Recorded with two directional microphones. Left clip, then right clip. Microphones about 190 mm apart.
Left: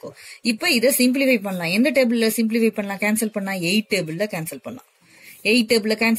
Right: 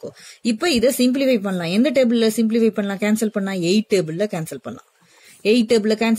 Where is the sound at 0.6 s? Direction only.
45° right (ahead or behind).